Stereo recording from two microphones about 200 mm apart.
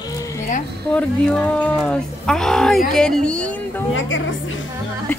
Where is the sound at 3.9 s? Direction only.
70° left (ahead or behind).